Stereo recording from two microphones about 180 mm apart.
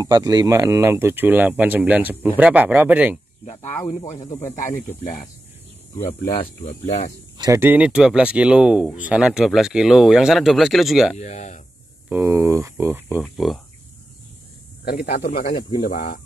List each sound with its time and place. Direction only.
0.0 s speech: 20° right (ahead or behind)
4.2 s speech: 15° left (ahead or behind)
6.4 s speech: 40° left (ahead or behind)
7.3 s speech: 20° right (ahead or behind); by 11.1 s centre (ahead or behind)
11.1 s speech: 40° left (ahead or behind)
12.1 s speech: 15° right (ahead or behind)
13.2 s speech: centre (ahead or behind)
14.9 s speech: 55° left (ahead or behind)